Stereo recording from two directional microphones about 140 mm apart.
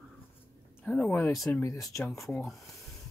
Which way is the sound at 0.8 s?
5° left (ahead or behind).